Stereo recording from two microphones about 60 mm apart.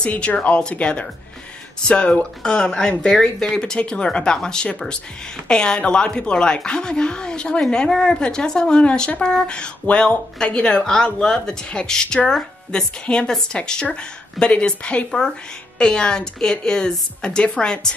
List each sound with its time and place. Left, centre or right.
0.0 s a woman's voice: centre